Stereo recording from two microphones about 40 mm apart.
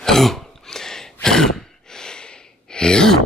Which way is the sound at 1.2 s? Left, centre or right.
Centre.